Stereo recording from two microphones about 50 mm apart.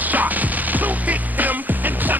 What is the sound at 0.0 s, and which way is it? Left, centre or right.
Music, right.